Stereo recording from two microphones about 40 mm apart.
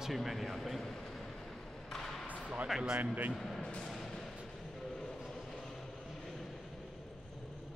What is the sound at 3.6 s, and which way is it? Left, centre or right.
Music, left.